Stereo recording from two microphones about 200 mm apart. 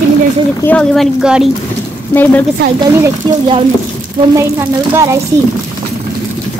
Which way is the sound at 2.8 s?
20° right (ahead or behind).